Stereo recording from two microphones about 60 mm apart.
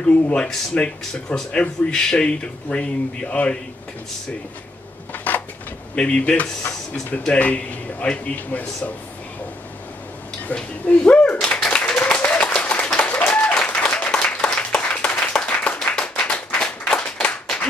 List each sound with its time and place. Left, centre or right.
0.0 s a man's voice: centre
5.1 s a sound: left
5.9 s a man's voice: centre
10.5 s speech: left
11.7 s applause: centre